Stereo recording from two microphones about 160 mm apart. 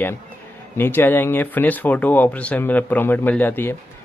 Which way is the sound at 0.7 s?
15° left (ahead or behind).